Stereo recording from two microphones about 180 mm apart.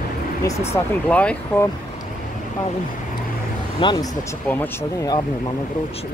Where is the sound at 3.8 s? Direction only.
20° left (ahead or behind).